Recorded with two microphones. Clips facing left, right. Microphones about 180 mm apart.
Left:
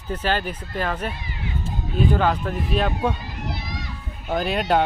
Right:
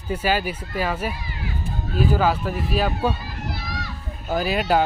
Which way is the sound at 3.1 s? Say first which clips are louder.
Even; 20° left (ahead or behind).